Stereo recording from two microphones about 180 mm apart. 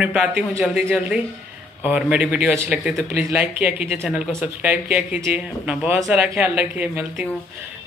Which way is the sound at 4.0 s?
5° left (ahead or behind).